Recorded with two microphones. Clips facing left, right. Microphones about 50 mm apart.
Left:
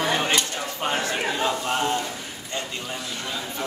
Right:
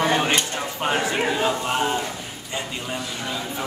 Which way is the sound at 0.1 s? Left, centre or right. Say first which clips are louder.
Right 2 dB; centre.